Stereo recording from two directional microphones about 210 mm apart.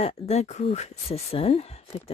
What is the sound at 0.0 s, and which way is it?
A woman's voice, 30° left (ahead or behind).